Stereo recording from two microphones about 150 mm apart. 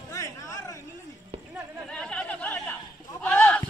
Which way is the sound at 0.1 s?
20° left (ahead or behind).